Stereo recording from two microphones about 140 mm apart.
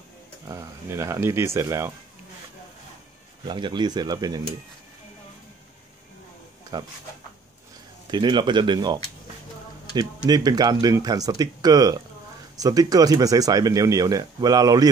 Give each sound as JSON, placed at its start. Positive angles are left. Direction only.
{"t": 0.5, "sound": "speech", "side_deg": -20}
{"t": 3.4, "sound": "speech", "side_deg": -35}
{"t": 6.7, "sound": "speech", "side_deg": -30}
{"t": 8.1, "sound": "speech", "side_deg": -35}